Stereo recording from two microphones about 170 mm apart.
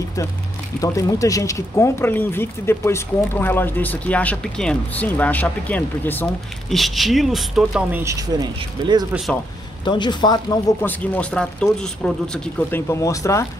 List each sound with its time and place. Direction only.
0.7 s speech: 20° left (ahead or behind)
6.7 s speech: centre (ahead or behind)
8.0 s speech: 20° right (ahead or behind)
9.1 s speech: centre (ahead or behind)
9.8 s speech: 25° left (ahead or behind)
10.8 s speech: 10° left (ahead or behind)
12.5 s speech: 15° left (ahead or behind)